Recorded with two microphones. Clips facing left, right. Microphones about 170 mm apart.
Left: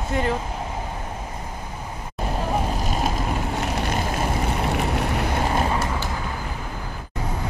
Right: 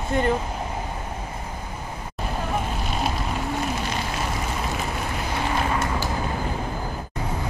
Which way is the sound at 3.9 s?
50° left (ahead or behind).